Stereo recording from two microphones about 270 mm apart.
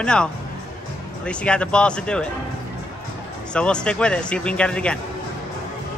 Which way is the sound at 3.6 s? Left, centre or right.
Centre.